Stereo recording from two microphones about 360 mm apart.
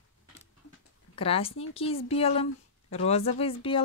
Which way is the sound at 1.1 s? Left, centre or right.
Centre.